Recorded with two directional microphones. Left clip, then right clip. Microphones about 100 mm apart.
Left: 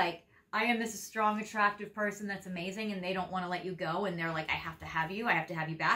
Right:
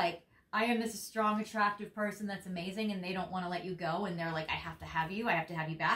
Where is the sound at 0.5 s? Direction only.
20° right (ahead or behind).